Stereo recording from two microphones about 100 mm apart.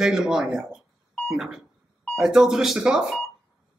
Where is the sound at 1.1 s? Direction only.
Centre (ahead or behind).